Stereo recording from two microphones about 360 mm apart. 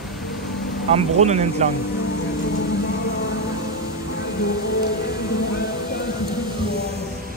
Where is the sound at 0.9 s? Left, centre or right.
Centre.